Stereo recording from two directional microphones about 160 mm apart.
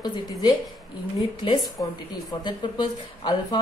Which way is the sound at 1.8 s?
25° left (ahead or behind).